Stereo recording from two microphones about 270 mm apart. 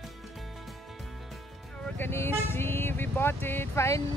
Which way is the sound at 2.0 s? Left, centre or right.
Centre.